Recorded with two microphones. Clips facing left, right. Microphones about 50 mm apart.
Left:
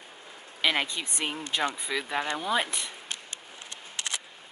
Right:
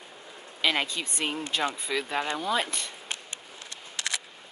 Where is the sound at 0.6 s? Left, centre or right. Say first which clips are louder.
Even; centre.